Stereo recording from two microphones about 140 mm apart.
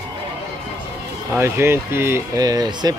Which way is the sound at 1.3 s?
15° right (ahead or behind).